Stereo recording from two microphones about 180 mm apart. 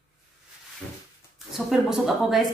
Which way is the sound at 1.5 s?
Centre (ahead or behind).